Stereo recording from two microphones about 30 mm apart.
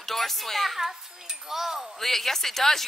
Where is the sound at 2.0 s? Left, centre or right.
Centre.